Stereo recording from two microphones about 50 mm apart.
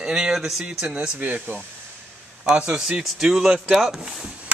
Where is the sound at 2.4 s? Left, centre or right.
Centre.